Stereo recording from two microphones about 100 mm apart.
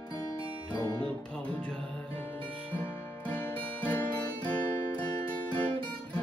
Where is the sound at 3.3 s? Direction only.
15° left (ahead or behind).